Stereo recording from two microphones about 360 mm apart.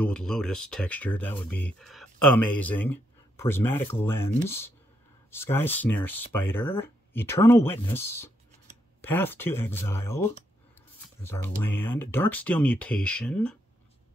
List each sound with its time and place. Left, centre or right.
0.0 s speech: centre
5.3 s speech: centre
9.0 s speech: centre
11.4 s speech: left
11.8 s speech: centre